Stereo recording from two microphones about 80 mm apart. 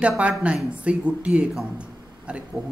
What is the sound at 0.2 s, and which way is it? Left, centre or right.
Speech, centre.